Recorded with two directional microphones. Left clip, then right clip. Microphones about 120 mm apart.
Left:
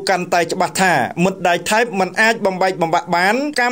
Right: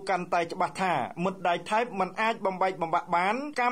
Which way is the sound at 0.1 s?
30° left (ahead or behind).